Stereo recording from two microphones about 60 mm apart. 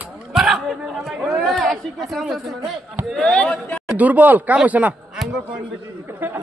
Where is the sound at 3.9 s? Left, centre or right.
Right.